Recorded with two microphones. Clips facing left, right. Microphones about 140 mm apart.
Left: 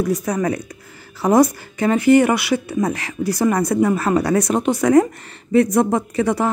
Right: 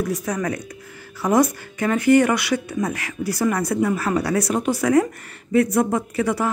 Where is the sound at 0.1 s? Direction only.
35° left (ahead or behind).